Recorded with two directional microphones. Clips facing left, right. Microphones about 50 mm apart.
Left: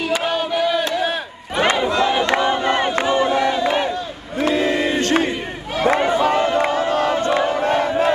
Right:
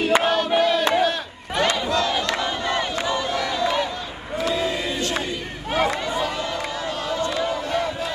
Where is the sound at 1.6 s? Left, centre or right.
Left.